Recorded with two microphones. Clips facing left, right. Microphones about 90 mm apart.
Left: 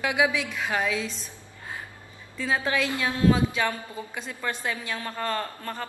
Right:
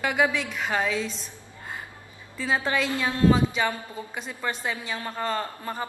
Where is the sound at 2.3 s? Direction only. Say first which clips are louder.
Right 1 dB; centre (ahead or behind).